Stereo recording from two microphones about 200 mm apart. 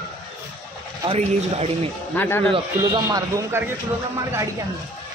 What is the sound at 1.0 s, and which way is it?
Speech, 30° right (ahead or behind).